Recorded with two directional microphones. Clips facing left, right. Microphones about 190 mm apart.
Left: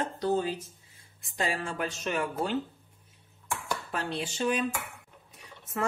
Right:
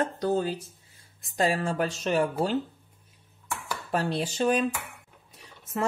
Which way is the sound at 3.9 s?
40° right (ahead or behind).